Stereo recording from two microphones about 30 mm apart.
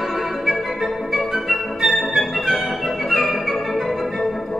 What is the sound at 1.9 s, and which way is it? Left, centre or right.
Music, centre.